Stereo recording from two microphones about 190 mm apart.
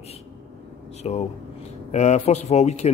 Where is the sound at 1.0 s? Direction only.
35° left (ahead or behind).